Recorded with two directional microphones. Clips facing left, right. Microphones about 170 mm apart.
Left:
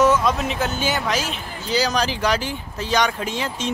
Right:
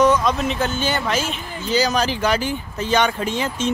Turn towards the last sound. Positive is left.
turn(degrees=0)  # may be behind; listen again after turning